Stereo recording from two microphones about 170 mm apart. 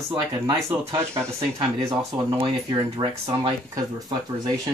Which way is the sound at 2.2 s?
25° right (ahead or behind).